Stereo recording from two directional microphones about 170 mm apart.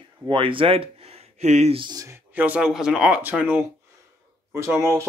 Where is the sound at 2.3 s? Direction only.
10° right (ahead or behind).